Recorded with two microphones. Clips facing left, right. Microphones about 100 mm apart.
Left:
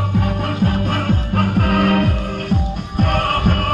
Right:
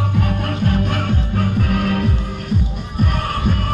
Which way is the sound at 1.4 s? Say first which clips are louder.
Left 4 dB; 60° left (ahead or behind).